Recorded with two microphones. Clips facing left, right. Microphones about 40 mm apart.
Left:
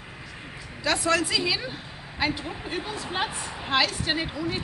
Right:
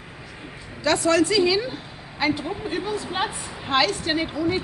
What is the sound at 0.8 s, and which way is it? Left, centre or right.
A woman's voice, centre.